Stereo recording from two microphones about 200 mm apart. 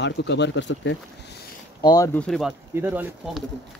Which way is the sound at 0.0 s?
60° left (ahead or behind).